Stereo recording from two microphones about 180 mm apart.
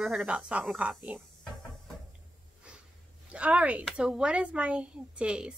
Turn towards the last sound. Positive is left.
turn(degrees=-5)  # may be behind; listen again after turning